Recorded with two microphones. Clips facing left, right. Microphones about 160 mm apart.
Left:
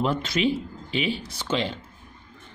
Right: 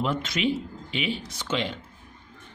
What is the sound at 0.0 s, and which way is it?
Speech, 35° left (ahead or behind).